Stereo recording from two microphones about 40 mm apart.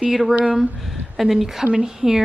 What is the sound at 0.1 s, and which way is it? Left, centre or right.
A woman's voice, centre.